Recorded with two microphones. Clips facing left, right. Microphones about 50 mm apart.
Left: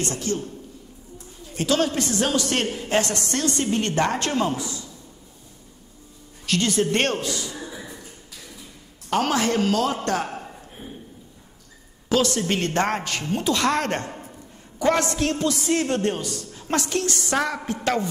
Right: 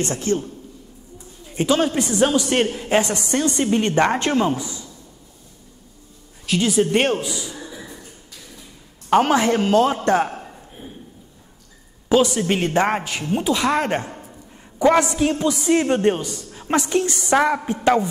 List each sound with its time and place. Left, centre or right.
0.0 s a man's voice: right
1.5 s a man's voice: centre
6.4 s a man's voice: centre
7.5 s a sound: centre
9.1 s a man's voice: right
12.1 s a man's voice: centre